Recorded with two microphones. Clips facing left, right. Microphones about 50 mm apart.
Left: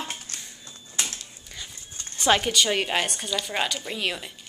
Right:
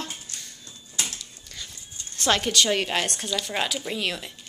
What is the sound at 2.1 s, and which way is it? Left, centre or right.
A woman's voice, centre.